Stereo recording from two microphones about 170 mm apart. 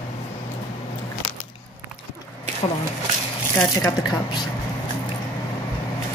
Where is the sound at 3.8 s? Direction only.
25° left (ahead or behind).